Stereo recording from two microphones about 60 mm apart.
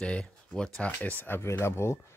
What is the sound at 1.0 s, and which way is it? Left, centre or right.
Speech, left.